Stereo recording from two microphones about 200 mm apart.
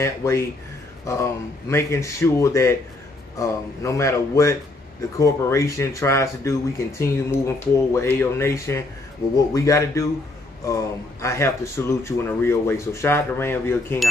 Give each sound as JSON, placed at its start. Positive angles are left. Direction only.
{"t": 0.0, "sound": "speech", "side_deg": 15}